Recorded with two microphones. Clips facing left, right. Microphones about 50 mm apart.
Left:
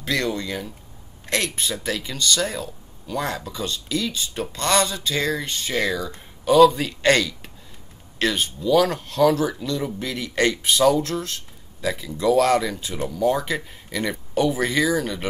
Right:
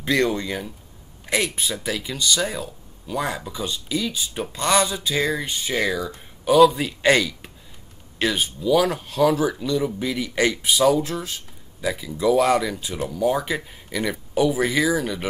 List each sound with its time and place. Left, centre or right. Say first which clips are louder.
0.0 s speech: right 3 dB; right; by 15.2 s centre